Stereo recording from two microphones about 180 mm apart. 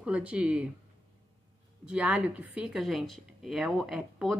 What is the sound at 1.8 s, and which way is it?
A woman's voice, 5° right (ahead or behind).